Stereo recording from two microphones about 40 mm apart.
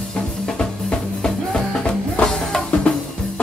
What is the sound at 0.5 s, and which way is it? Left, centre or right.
Music, centre.